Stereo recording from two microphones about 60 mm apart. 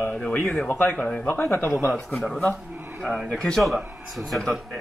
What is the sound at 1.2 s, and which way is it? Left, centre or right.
Speech, left.